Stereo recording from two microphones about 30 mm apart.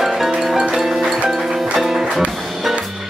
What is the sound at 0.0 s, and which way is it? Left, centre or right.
Music, centre.